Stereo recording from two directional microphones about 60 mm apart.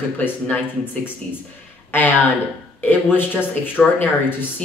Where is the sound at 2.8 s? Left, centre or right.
Left.